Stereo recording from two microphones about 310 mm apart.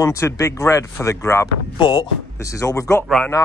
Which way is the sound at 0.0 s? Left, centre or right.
Centre.